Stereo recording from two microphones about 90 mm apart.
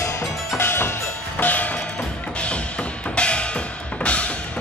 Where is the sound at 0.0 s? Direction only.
30° left (ahead or behind).